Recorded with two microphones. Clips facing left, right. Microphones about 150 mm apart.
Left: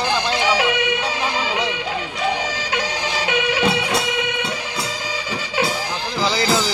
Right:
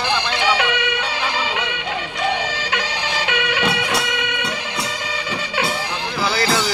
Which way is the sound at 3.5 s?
30° left (ahead or behind).